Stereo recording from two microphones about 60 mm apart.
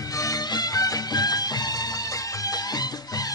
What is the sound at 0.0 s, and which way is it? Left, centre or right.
Music, left.